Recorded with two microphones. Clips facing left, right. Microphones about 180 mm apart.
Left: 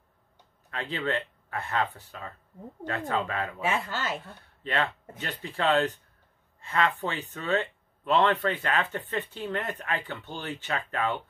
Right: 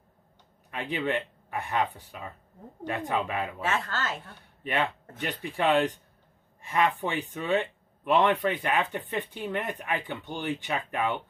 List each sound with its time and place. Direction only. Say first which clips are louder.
0.7 s speech: right 1 dB; 15° right (ahead or behind)
3.6 s speech: left 2 dB; 10° left (ahead or behind)
5.2 s speech: right 1 dB; 15° right (ahead or behind)